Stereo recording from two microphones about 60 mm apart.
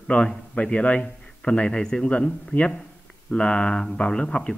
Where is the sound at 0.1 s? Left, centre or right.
Centre.